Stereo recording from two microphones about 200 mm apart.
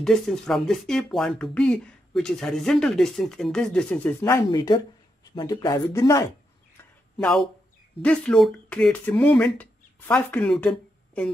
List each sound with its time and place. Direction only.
0.0 s speech: centre (ahead or behind)
7.2 s speech: 5° left (ahead or behind)